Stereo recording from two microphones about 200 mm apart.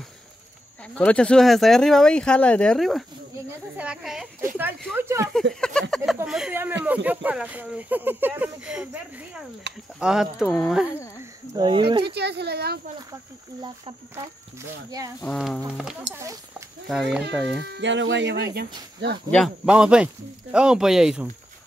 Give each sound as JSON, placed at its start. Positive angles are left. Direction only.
{"t": 0.8, "sound": "speech", "side_deg": 5}
{"t": 4.9, "sound": "speech", "side_deg": -15}
{"t": 5.5, "sound": "speech", "side_deg": 5}
{"t": 11.5, "sound": "speech", "side_deg": -20}
{"t": 12.0, "sound": "speech", "side_deg": -55}
{"t": 13.6, "sound": "speech", "side_deg": -20}
{"t": 15.2, "sound": "speech", "side_deg": 0}
{"t": 16.1, "sound": "speech", "side_deg": -15}
{"t": 16.8, "sound": "speech", "side_deg": 0}
{"t": 17.6, "sound": "speech", "side_deg": -60}
{"t": 19.3, "sound": "speech", "side_deg": 0}